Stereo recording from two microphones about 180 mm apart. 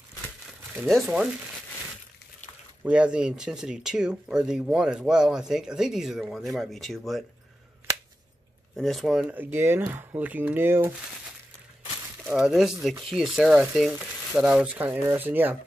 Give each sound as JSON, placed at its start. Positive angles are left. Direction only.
{"t": 0.8, "sound": "speech", "side_deg": 0}
{"t": 2.8, "sound": "speech", "side_deg": -5}
{"t": 8.7, "sound": "speech", "side_deg": 0}
{"t": 12.3, "sound": "speech", "side_deg": -5}